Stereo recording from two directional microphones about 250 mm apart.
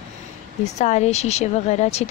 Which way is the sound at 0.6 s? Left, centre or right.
Left.